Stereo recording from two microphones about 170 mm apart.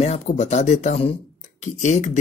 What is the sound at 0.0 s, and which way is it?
Speech, 40° left (ahead or behind).